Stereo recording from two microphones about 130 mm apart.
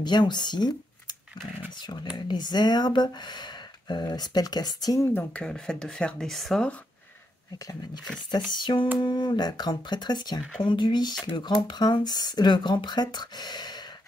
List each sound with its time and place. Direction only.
0.0 s speech: 35° left (ahead or behind)
2.1 s speech: 35° left (ahead or behind)
5.0 s speech: 10° left (ahead or behind)
8.3 s speech: 35° left (ahead or behind)